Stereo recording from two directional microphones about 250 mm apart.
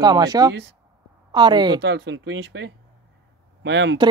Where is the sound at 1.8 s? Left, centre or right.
Right.